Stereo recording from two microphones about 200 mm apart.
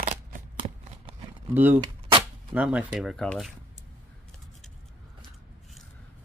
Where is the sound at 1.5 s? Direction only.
10° right (ahead or behind).